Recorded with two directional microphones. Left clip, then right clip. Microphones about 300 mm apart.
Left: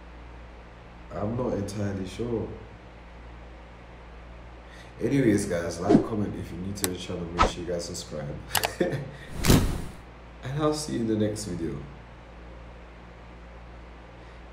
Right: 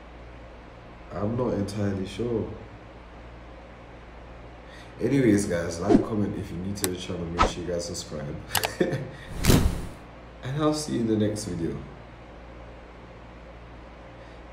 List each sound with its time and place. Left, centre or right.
1.1 s a man's voice: centre
4.9 s a man's voice: centre